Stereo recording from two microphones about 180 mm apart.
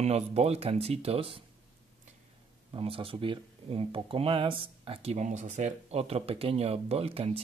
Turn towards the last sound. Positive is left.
turn(degrees=-35)  # may be behind; listen again after turning